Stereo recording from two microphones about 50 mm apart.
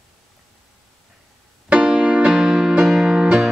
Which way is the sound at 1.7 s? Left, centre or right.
Centre.